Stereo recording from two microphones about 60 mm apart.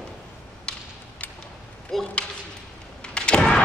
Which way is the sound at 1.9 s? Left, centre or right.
Centre.